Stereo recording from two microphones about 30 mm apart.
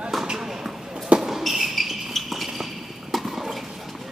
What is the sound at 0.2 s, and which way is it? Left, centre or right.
Basketball bounce, centre.